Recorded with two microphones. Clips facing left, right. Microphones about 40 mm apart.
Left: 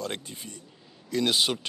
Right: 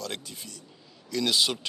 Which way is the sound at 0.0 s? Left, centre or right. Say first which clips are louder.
Left 2 dB; left.